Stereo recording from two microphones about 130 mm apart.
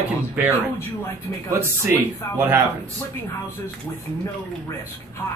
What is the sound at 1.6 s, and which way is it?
Speech, 20° right (ahead or behind).